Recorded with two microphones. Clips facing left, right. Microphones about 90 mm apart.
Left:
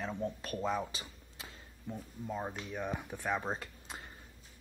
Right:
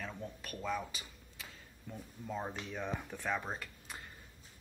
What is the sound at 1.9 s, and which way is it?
Speech, 20° left (ahead or behind).